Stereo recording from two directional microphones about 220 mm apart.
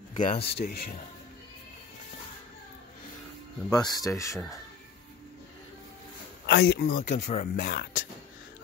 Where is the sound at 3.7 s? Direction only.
20° left (ahead or behind).